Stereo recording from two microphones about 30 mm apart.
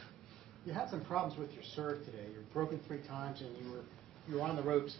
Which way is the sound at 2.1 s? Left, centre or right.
Centre.